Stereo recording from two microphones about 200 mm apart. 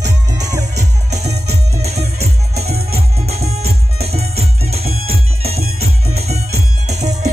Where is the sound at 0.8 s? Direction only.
35° right (ahead or behind).